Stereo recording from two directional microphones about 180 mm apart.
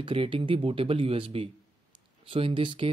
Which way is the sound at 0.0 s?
30° right (ahead or behind).